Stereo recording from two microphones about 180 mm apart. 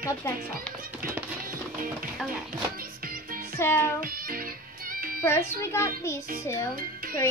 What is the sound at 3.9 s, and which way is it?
Music, 55° right (ahead or behind).